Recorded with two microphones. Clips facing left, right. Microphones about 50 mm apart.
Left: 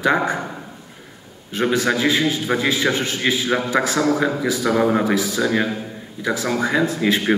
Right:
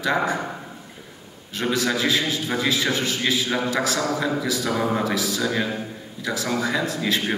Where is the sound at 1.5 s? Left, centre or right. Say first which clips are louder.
Left 4 dB; left.